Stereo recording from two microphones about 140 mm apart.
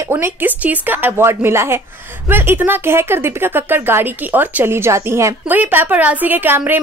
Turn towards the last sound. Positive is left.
turn(degrees=-15)  # may be behind; listen again after turning